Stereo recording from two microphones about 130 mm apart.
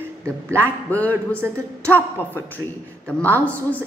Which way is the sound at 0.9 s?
10° left (ahead or behind).